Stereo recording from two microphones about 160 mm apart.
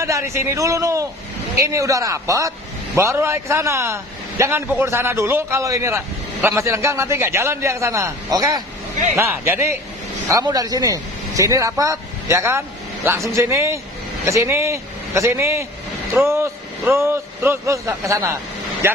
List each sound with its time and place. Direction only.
0.0 s a man's voice: 15° right (ahead or behind)